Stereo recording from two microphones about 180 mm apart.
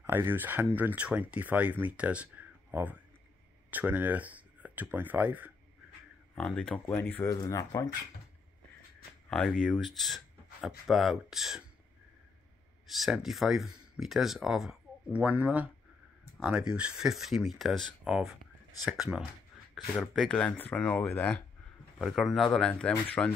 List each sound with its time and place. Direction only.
0.0 s speech: 10° right (ahead or behind)
6.3 s speech: 5° left (ahead or behind)
9.6 s speech: 5° left (ahead or behind)
12.9 s speech: centre (ahead or behind)